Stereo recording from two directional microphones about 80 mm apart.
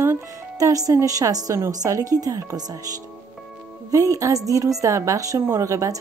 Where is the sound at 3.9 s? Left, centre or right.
Right.